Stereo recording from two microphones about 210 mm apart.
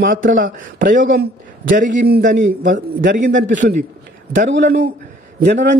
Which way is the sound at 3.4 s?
65° right (ahead or behind).